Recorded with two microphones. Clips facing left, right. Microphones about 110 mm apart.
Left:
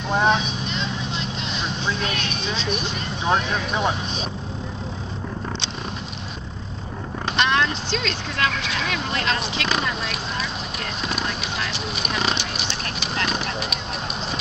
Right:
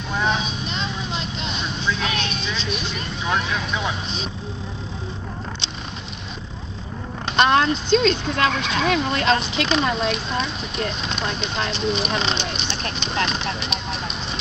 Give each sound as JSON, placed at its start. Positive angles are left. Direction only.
{"t": 0.1, "sound": "vehicle", "side_deg": 35}
{"t": 1.9, "sound": "a sound", "side_deg": 40}
{"t": 3.3, "sound": "speech", "side_deg": 40}
{"t": 7.3, "sound": "vehicle", "side_deg": -35}
{"t": 7.9, "sound": "speech", "side_deg": -30}
{"t": 11.1, "sound": "speech", "side_deg": 5}